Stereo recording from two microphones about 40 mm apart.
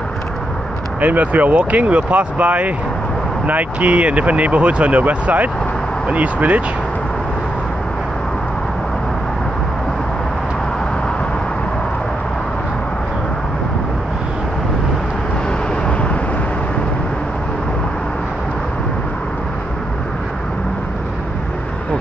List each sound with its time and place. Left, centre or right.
1.0 s speech: right